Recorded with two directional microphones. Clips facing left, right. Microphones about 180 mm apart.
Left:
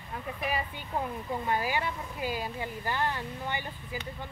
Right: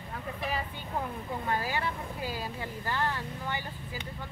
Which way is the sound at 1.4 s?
15° left (ahead or behind).